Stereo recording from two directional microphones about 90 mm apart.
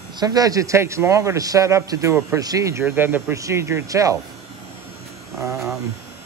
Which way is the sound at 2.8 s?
25° right (ahead or behind).